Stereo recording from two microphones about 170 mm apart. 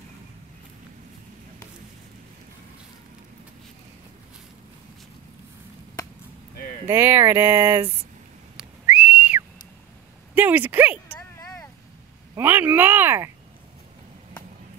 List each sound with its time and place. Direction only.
6.9 s speech: 15° right (ahead or behind)
8.5 s whistle: 5° right (ahead or behind)
10.3 s speech: 10° right (ahead or behind)
11.1 s a sound: 20° left (ahead or behind)
12.4 s speech: 10° right (ahead or behind)